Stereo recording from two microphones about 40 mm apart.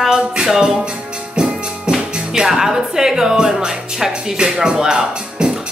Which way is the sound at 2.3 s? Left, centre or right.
Centre.